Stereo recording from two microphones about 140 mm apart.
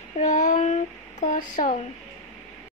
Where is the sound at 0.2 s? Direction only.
65° left (ahead or behind).